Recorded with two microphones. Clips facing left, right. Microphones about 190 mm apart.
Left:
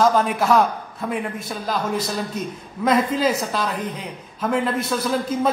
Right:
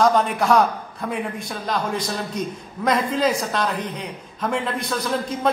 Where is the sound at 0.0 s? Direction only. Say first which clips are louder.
Even; centre (ahead or behind).